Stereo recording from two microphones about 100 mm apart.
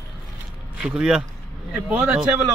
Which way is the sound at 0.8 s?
10° right (ahead or behind).